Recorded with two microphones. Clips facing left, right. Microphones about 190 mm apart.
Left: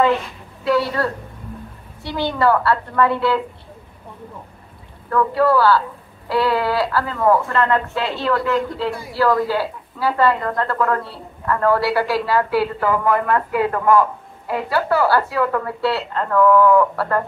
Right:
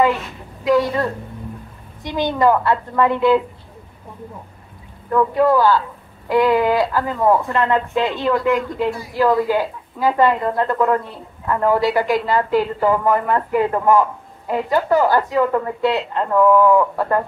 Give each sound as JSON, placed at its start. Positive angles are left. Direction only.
{"t": 0.7, "sound": "speech", "side_deg": -15}
{"t": 2.0, "sound": "speech", "side_deg": -20}
{"t": 5.1, "sound": "speech", "side_deg": -15}